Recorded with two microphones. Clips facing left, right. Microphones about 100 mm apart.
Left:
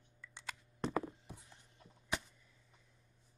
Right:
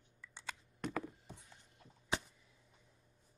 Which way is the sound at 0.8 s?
30° left (ahead or behind).